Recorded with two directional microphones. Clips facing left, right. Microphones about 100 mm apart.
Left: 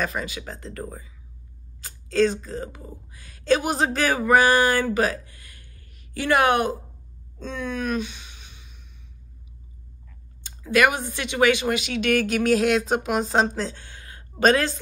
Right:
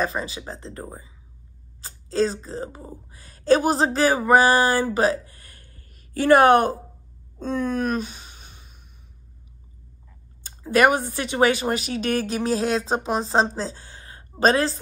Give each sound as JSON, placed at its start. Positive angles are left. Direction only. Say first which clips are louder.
{"t": 0.0, "sound": "speech", "louder": "right 2 dB", "side_deg": -30}
{"t": 7.3, "sound": "a sound", "louder": "right 5 dB", "side_deg": -45}
{"t": 10.6, "sound": "a woman's voice", "louder": "right 2 dB", "side_deg": -40}